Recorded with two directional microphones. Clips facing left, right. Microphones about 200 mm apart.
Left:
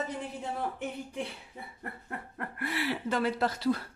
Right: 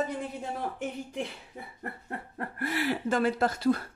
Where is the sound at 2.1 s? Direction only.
30° right (ahead or behind).